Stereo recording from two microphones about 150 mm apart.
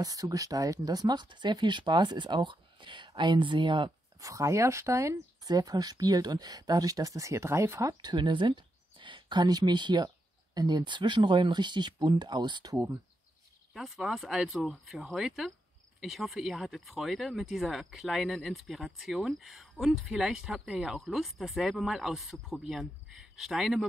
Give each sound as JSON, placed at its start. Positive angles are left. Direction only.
{"t": 0.0, "sound": "speech", "side_deg": -25}
{"t": 4.2, "sound": "speech", "side_deg": -20}
{"t": 8.0, "sound": "speech", "side_deg": -30}
{"t": 13.7, "sound": "speech", "side_deg": 0}